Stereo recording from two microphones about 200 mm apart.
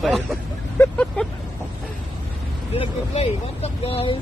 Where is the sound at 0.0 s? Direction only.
Centre (ahead or behind).